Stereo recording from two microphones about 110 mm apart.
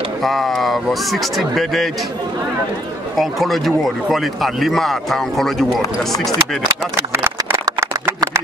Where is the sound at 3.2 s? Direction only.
Centre (ahead or behind).